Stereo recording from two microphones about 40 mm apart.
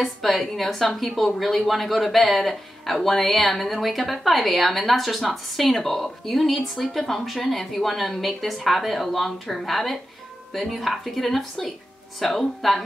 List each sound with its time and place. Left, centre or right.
0.0 s speech: centre